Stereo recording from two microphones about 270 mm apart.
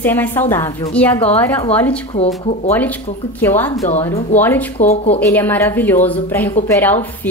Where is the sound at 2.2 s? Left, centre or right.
Left.